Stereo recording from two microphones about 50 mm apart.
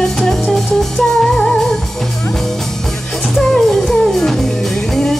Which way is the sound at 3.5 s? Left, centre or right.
Centre.